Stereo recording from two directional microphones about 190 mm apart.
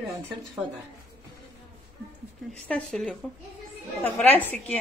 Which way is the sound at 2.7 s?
5° left (ahead or behind).